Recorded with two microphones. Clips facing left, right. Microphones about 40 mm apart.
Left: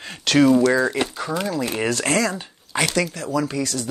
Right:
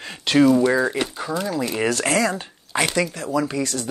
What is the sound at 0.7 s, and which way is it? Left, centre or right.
Speech, centre.